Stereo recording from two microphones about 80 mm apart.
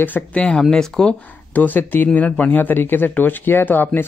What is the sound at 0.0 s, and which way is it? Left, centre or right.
Speech, centre.